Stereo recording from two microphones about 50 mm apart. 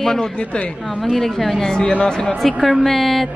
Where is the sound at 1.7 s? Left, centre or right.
Centre.